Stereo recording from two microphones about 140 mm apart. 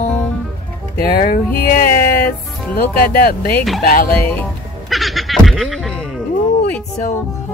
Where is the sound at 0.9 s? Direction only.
90° left.